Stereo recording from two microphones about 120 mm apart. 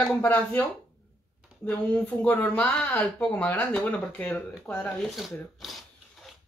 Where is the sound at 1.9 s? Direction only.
10° left (ahead or behind).